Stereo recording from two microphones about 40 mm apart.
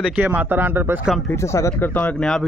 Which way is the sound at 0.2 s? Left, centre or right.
Right.